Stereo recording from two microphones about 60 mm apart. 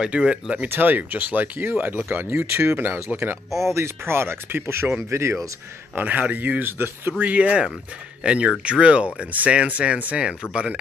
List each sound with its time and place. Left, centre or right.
0.0 s speech: centre
0.7 s speech: right
3.6 s speech: right
5.9 s speech: right